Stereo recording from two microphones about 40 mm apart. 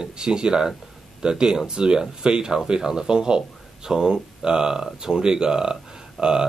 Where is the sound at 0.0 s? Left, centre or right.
Centre.